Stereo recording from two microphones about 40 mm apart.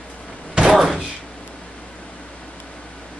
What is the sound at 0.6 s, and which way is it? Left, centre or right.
Door, centre.